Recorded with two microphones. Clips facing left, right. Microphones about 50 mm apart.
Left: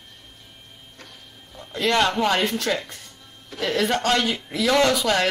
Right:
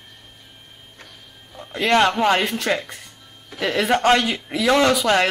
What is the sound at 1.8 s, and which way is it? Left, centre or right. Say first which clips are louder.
A man's voice: right 3 dB; right.